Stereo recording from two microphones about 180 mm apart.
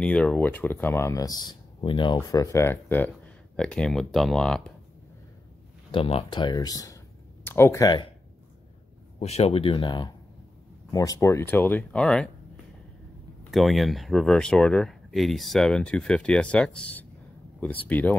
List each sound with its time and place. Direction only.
0.0 s speech: 5° left (ahead or behind)
5.9 s speech: 30° left (ahead or behind)
9.2 s speech: 35° left (ahead or behind); by 12.3 s 5° left (ahead or behind)
13.4 s speech: centre (ahead or behind)